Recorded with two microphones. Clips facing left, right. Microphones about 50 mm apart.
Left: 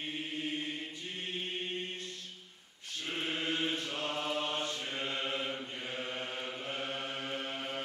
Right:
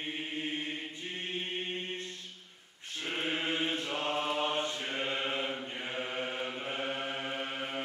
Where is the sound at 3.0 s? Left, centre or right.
Right.